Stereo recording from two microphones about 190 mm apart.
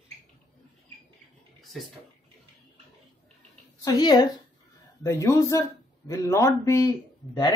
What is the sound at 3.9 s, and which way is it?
A woman's voice, 20° left (ahead or behind).